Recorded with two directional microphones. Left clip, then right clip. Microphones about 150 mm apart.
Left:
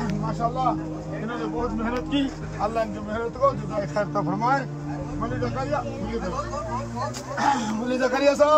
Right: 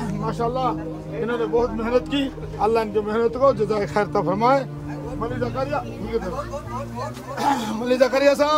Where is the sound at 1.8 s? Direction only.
30° right (ahead or behind).